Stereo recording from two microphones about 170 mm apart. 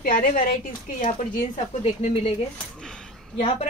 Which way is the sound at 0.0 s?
55° left (ahead or behind).